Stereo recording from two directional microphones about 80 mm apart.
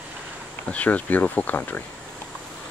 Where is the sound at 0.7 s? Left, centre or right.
Centre.